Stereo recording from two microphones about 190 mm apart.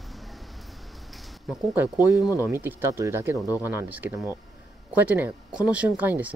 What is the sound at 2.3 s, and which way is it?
Speech, 10° right (ahead or behind).